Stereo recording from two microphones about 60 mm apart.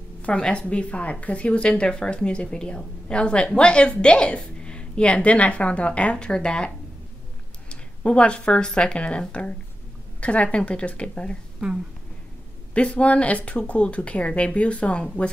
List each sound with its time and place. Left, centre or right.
0.2 s speech: centre
7.7 s speech: centre
12.7 s speech: left